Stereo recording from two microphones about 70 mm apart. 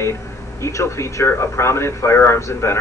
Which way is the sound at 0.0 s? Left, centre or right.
Left.